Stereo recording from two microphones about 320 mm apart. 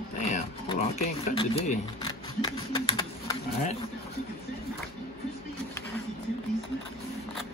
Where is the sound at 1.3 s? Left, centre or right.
Centre.